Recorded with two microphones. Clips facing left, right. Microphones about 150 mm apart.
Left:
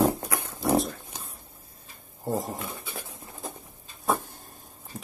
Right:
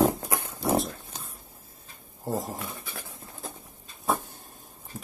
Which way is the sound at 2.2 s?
Centre (ahead or behind).